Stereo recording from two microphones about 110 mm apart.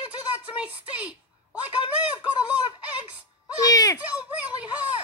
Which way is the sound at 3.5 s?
35° left (ahead or behind).